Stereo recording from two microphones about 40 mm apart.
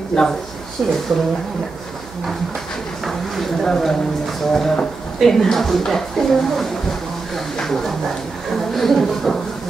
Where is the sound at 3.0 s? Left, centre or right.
Centre.